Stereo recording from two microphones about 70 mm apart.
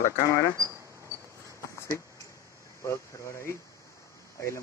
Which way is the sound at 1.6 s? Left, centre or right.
Left.